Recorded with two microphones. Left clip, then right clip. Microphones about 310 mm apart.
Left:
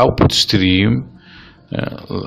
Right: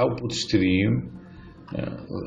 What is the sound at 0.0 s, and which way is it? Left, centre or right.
Speech, left.